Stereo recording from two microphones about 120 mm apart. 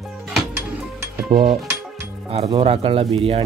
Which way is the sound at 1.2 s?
40° right (ahead or behind).